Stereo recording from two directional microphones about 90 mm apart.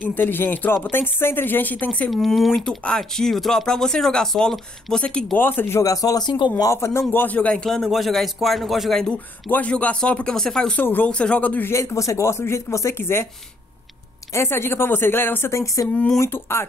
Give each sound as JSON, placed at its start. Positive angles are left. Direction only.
{"t": 0.1, "sound": "speech", "side_deg": 20}
{"t": 2.0, "sound": "speech", "side_deg": 0}
{"t": 5.4, "sound": "speech", "side_deg": 25}
{"t": 5.8, "sound": "speech", "side_deg": 40}
{"t": 6.6, "sound": "a man's voice", "side_deg": 30}
{"t": 9.5, "sound": "a man's voice", "side_deg": 15}
{"t": 10.8, "sound": "a man's voice", "side_deg": 20}
{"t": 11.7, "sound": "speech", "side_deg": 35}
{"t": 14.3, "sound": "speech", "side_deg": 25}